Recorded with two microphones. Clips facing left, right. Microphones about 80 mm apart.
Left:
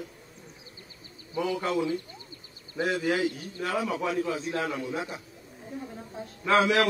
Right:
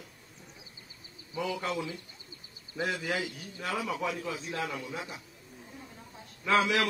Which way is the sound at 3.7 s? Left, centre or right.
Left.